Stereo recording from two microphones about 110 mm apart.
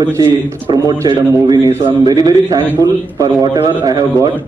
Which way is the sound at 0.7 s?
40° right (ahead or behind).